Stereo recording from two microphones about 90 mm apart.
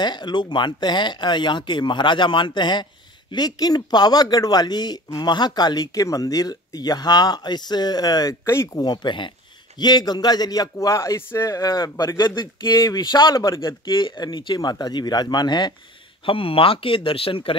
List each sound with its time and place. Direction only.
0.0 s speech: 55° left (ahead or behind); by 8.8 s 40° left (ahead or behind)
8.8 s speech: 55° left (ahead or behind)
9.8 s speech: 50° left (ahead or behind)
13.8 s speech: 60° left (ahead or behind)
16.3 s speech: 85° left